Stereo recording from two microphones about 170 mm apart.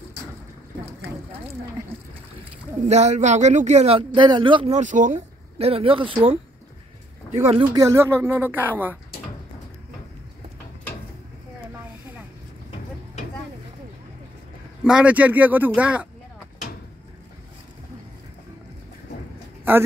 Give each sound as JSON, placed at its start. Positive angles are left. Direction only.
{"t": 2.9, "sound": "speech", "side_deg": -40}
{"t": 4.6, "sound": "speech", "side_deg": -45}
{"t": 7.2, "sound": "speech", "side_deg": -40}
{"t": 7.7, "sound": "a man's voice", "side_deg": -15}
{"t": 14.8, "sound": "a man's voice", "side_deg": -5}